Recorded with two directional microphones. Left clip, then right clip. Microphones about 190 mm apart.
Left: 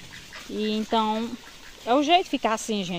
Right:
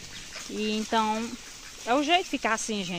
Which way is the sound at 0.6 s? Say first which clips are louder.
Left 2 dB; 15° left (ahead or behind).